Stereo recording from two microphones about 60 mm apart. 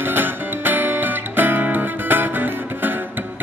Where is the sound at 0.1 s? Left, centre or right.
Right.